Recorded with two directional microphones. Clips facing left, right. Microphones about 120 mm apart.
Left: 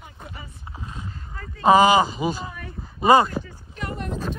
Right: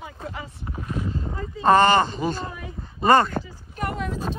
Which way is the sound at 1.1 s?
25° right (ahead or behind).